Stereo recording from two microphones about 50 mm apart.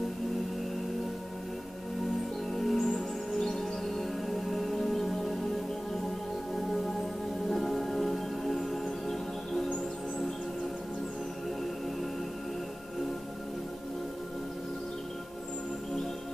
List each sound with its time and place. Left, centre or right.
2.5 s music: centre
6.5 s music: centre
9.7 s music: centre